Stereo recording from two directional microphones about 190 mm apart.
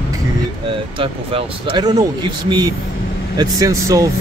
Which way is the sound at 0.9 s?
25° right (ahead or behind).